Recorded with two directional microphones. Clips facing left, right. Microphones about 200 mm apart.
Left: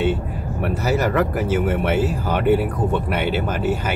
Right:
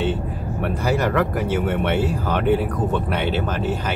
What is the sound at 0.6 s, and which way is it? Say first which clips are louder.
Speech: left 1 dB; 5° left (ahead or behind).